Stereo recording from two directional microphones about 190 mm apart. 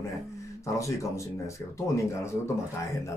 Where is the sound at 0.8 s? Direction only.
15° left (ahead or behind).